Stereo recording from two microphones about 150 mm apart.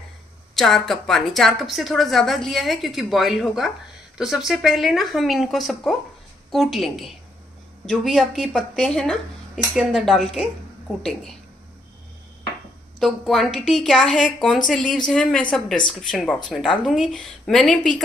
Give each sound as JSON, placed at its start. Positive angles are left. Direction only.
{"t": 0.6, "sound": "a woman's voice", "side_deg": 0}
{"t": 13.0, "sound": "a woman's voice", "side_deg": 0}